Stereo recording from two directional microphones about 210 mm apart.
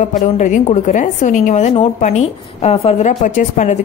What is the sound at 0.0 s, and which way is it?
A woman's voice, 35° left (ahead or behind).